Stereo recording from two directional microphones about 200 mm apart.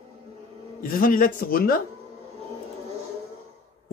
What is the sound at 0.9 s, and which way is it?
Speech, 45° left (ahead or behind).